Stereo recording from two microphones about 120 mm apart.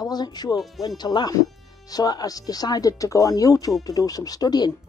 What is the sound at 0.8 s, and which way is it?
Speech, 35° left (ahead or behind).